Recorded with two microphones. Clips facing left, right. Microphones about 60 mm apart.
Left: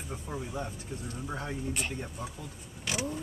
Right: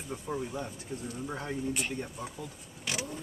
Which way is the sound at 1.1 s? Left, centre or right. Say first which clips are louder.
Even; centre.